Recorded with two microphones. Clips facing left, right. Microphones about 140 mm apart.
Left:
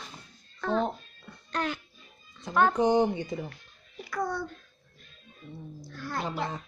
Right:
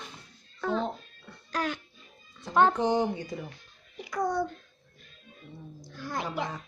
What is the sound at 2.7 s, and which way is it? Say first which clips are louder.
Speech: left 3 dB; 20° left (ahead or behind).